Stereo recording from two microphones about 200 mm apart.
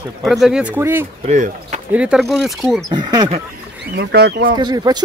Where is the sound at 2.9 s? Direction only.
20° right (ahead or behind).